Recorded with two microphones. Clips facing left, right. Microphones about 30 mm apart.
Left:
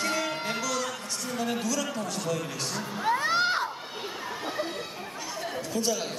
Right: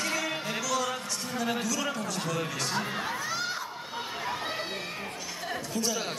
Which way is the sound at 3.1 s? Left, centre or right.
Left.